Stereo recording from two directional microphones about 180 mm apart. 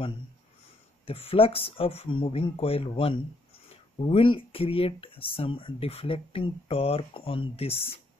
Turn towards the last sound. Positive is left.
turn(degrees=30)  # may be behind; listen again after turning